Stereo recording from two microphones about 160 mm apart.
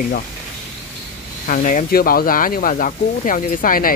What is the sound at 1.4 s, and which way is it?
Speech, 55° left (ahead or behind).